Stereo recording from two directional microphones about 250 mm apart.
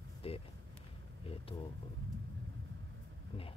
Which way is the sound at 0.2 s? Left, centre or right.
Left.